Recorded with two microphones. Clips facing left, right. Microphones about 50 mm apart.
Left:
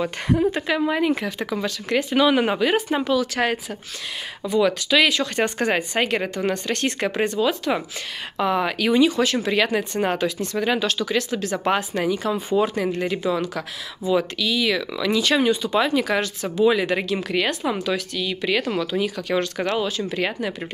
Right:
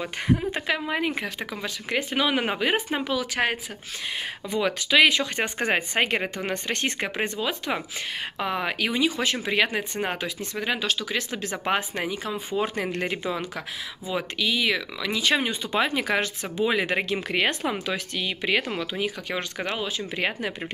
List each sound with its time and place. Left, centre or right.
0.5 s speech: centre
4.5 s speech: right; by 9.2 s centre
9.2 s speech: right
11.1 s speech: right
12.3 s speech: centre
12.6 s speech: right
15.0 s speech: centre